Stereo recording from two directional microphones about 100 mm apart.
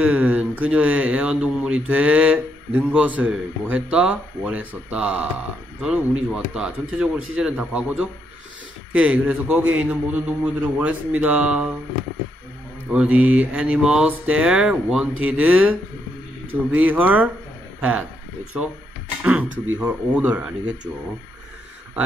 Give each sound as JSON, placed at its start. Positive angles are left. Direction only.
{"t": 0.0, "sound": "speech", "side_deg": -15}
{"t": 12.9, "sound": "speech", "side_deg": -15}
{"t": 16.7, "sound": "speech", "side_deg": -15}
{"t": 19.2, "sound": "speech", "side_deg": -15}